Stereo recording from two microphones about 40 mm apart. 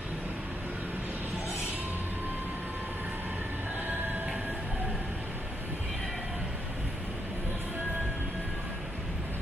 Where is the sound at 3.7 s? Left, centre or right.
Right.